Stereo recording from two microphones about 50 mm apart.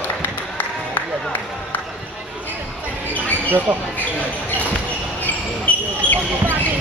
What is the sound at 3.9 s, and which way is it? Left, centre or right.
Basketball bounce, left.